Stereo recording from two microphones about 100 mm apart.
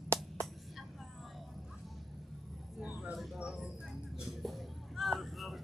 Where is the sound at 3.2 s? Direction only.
Centre (ahead or behind).